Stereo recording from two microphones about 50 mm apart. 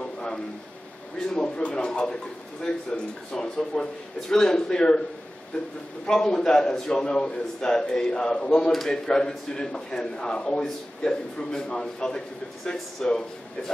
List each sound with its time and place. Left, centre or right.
0.0 s a sound: centre
1.2 s speech: centre
6.0 s speech: centre